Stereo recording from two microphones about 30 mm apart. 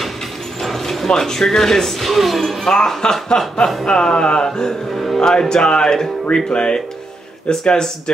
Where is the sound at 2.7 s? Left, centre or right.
Left.